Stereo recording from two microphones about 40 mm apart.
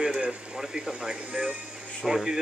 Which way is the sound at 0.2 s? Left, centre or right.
Right.